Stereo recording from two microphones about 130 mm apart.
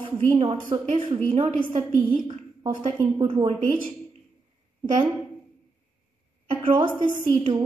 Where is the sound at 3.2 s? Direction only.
40° right (ahead or behind).